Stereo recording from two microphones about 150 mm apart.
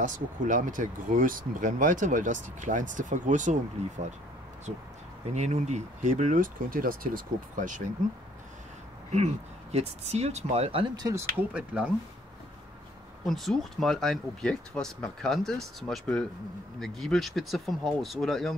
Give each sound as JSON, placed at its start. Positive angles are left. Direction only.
{"t": 0.0, "sound": "speech", "side_deg": -60}
{"t": 5.3, "sound": "speech", "side_deg": -50}
{"t": 9.1, "sound": "speech", "side_deg": -45}
{"t": 11.5, "sound": "speech", "side_deg": -10}
{"t": 13.2, "sound": "speech", "side_deg": 0}